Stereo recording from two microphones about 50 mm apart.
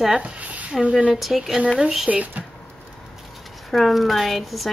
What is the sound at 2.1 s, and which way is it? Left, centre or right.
Speech, right.